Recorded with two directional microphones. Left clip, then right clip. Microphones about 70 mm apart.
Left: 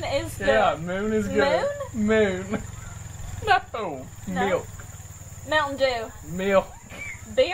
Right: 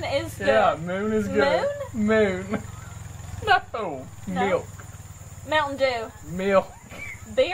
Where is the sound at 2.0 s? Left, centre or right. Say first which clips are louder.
Even; centre.